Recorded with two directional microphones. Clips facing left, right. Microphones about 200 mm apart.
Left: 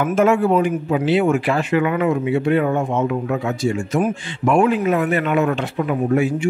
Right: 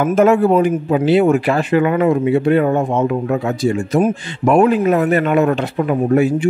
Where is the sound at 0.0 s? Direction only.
40° right (ahead or behind).